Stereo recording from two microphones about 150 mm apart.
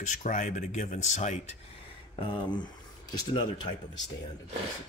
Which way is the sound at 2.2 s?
30° left (ahead or behind).